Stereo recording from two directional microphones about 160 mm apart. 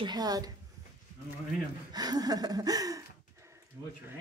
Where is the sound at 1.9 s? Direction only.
25° right (ahead or behind).